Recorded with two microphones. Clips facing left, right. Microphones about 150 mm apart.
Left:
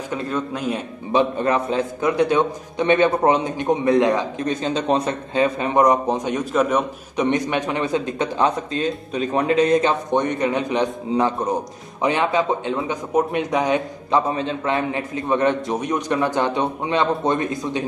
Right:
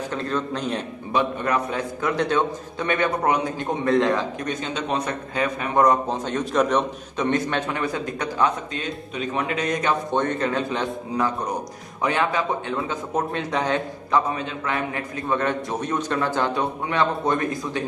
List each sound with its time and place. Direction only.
0.1 s a man's voice: 5° left (ahead or behind)
1.1 s a man's voice: 25° left (ahead or behind)
10.1 s a man's voice: 15° left (ahead or behind)
13.7 s a man's voice: 25° left (ahead or behind)